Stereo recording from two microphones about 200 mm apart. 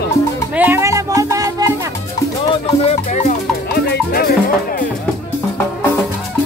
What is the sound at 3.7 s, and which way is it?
Music, 50° left (ahead or behind).